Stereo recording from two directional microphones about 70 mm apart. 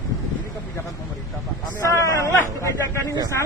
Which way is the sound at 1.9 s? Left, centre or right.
Left.